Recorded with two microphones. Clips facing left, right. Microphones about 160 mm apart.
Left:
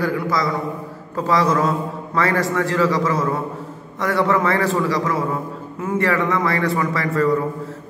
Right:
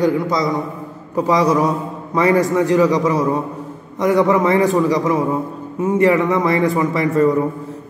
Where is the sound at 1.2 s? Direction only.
15° right (ahead or behind).